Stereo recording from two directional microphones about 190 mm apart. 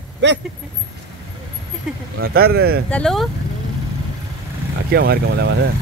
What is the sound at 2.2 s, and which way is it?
Speech, 55° right (ahead or behind).